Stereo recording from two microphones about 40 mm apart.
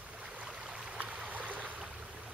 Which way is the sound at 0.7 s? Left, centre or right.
Right.